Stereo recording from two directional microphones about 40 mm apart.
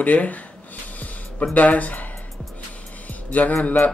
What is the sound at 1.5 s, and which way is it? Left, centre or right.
Speech, left.